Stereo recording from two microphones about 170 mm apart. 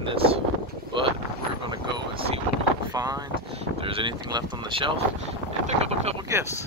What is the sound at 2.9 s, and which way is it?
Vehicle, 20° right (ahead or behind).